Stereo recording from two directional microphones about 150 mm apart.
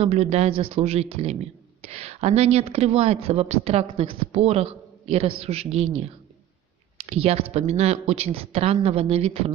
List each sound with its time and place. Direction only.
0.0 s speech: 45° right (ahead or behind)
7.1 s speech: 40° right (ahead or behind)